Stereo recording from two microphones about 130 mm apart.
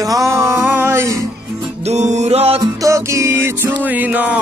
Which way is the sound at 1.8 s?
60° right (ahead or behind).